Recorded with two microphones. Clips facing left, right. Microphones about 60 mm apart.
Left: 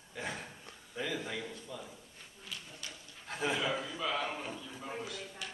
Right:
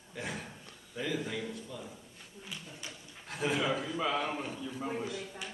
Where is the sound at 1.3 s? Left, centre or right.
Centre.